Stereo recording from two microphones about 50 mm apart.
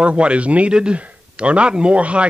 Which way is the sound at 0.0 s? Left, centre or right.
Right.